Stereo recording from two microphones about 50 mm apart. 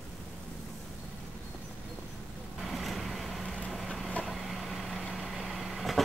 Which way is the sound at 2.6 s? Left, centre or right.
Centre.